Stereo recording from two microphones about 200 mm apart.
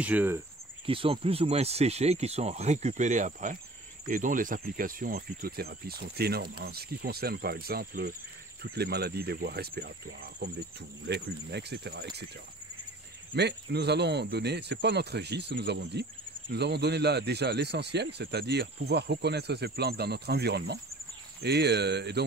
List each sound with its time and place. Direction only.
0.0 s cricket: 10° right (ahead or behind)
0.8 s speech: 25° right (ahead or behind); by 12.3 s 55° right (ahead or behind)
13.3 s speech: 55° right (ahead or behind)